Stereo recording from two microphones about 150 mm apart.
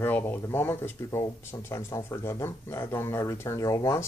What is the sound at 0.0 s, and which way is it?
Speech, 15° left (ahead or behind).